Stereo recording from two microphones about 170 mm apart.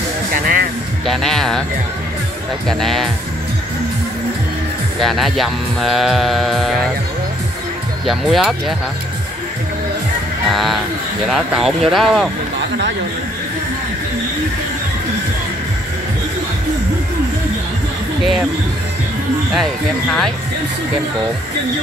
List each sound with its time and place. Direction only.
0.3 s music: 55° right (ahead or behind)
1.0 s music: centre (ahead or behind)
2.7 s music: centre (ahead or behind)
5.0 s music: centre (ahead or behind)
8.1 s music: centre (ahead or behind)
10.5 s music: centre (ahead or behind)
19.5 s music: centre (ahead or behind)